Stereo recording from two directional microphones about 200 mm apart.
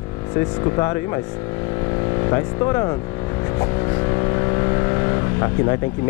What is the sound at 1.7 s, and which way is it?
Vehicle, 20° left (ahead or behind).